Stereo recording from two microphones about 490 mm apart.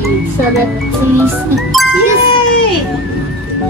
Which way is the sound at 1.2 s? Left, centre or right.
Centre.